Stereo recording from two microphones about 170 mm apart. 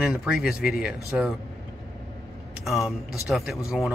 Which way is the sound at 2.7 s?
Centre (ahead or behind).